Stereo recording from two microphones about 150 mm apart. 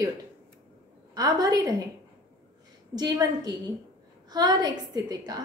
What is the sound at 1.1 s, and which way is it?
Speech, 25° right (ahead or behind).